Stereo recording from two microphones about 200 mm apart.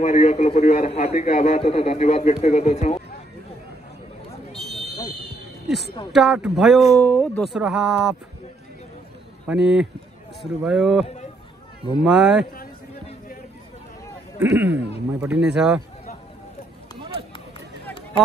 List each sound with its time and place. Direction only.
0.0 s a man's voice: 35° left (ahead or behind)
4.5 s a sound: centre (ahead or behind)
6.1 s speech: 5° right (ahead or behind)
9.5 s speech: 5° right (ahead or behind)
14.4 s speech: 10° right (ahead or behind)